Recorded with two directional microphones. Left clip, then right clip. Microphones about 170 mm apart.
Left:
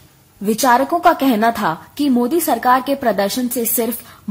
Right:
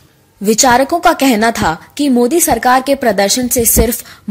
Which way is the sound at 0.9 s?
10° right (ahead or behind).